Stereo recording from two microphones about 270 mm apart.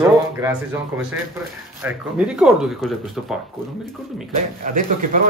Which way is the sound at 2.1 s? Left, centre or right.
Centre.